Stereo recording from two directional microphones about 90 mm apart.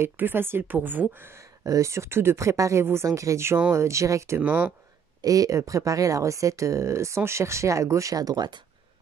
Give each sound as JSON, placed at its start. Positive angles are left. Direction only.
{"t": 0.0, "sound": "speech", "side_deg": -25}
{"t": 4.4, "sound": "speech", "side_deg": -15}
{"t": 5.2, "sound": "speech", "side_deg": -40}